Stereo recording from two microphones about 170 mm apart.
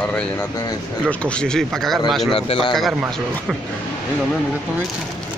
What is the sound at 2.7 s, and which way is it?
Speech, 5° right (ahead or behind).